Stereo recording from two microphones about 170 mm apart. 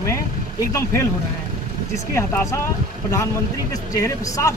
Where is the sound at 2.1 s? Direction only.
15° left (ahead or behind).